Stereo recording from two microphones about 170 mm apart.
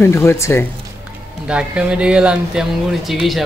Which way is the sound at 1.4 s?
5° right (ahead or behind).